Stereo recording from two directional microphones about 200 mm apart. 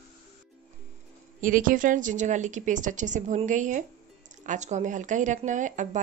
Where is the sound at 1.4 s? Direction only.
45° right (ahead or behind).